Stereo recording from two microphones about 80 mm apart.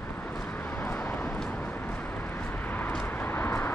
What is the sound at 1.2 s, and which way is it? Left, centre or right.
Vehicle, centre.